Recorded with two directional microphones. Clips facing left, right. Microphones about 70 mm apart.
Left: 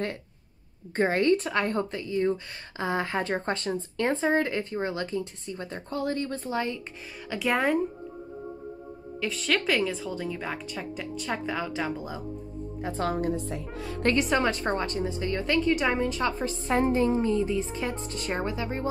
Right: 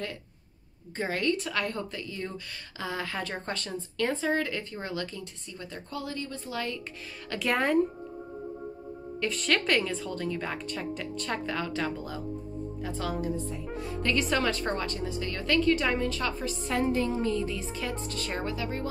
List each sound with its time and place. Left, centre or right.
0.9 s a woman's voice: left
6.5 s a woman's voice: left
7.2 s a woman's voice: centre
9.2 s a woman's voice: centre
12.8 s speech: left
13.3 s speech: left
14.1 s a woman's voice: left